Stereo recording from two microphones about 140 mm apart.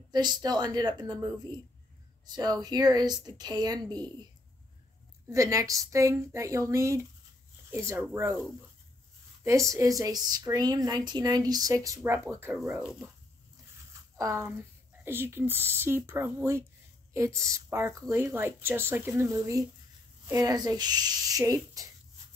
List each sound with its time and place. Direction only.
0.1 s speech: 30° right (ahead or behind)
5.3 s speech: 20° right (ahead or behind)
9.4 s speech: 20° right (ahead or behind); by 13.1 s 5° right (ahead or behind)
14.1 s speech: 20° right (ahead or behind)